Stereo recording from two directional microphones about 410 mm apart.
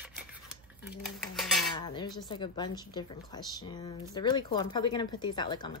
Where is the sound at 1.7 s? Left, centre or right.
Centre.